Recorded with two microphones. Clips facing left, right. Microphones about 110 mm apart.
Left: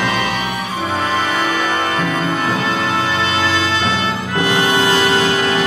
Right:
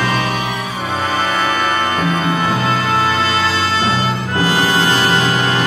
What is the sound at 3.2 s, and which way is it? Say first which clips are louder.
Music: right 1 dB; 35° right (ahead or behind).